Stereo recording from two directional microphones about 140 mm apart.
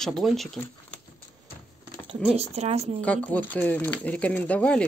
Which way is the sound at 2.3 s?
50° right (ahead or behind).